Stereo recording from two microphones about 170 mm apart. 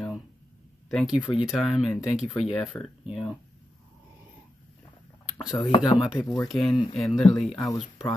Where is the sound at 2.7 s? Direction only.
15° left (ahead or behind).